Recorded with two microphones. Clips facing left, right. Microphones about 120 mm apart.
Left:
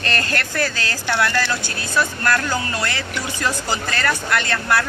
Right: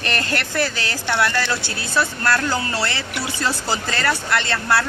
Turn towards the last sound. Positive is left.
turn(degrees=-25)  # may be behind; listen again after turning